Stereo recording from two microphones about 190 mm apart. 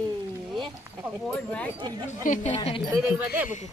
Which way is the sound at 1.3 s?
5° left (ahead or behind).